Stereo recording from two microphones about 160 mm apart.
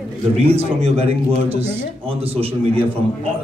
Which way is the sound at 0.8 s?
40° right (ahead or behind).